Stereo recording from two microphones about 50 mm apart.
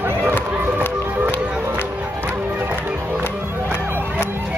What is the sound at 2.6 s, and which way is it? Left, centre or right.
Music, right.